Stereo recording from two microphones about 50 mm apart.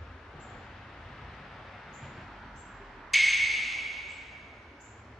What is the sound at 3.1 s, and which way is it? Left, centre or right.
Music, centre.